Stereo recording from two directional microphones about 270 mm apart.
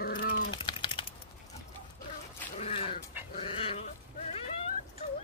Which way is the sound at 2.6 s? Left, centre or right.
Centre.